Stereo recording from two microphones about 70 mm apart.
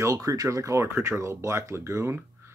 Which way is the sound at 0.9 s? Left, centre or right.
Right.